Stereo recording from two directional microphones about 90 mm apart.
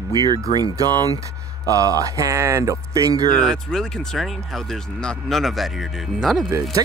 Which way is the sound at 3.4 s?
5° left (ahead or behind).